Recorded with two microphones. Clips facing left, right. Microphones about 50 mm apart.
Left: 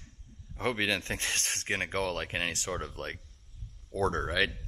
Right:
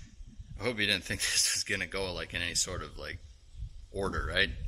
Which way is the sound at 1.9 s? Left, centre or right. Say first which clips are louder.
Left 4 dB; left.